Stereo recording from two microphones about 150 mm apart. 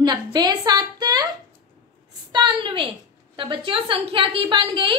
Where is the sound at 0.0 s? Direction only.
30° right (ahead or behind).